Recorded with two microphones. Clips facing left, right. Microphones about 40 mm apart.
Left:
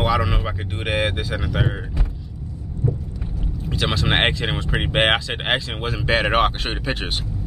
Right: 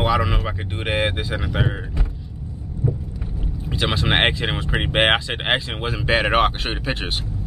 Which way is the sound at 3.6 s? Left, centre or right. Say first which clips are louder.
Even; centre.